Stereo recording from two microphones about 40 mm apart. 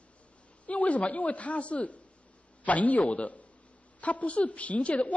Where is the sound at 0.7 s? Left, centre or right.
Left.